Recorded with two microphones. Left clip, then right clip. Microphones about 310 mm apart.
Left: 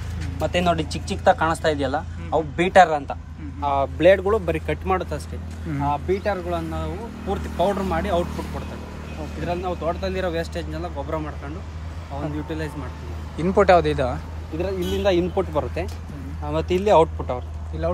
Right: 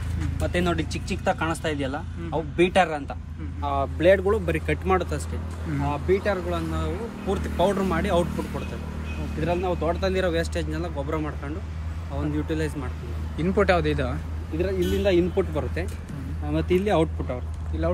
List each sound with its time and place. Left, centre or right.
0.4 s speech: centre
4.5 s speech: centre
9.4 s speech: centre
12.4 s speech: centre
13.4 s speech: centre